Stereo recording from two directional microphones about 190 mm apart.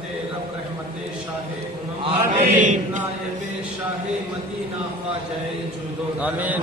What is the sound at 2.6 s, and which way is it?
Chant, 40° right (ahead or behind).